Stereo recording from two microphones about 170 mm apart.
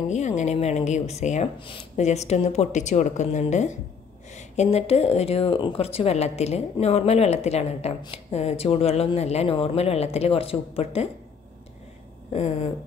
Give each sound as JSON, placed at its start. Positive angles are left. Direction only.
{"t": 0.1, "sound": "speech", "side_deg": 45}
{"t": 12.3, "sound": "speech", "side_deg": 40}